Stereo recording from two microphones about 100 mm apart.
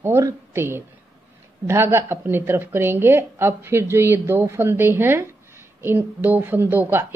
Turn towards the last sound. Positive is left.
turn(degrees=-20)  # may be behind; listen again after turning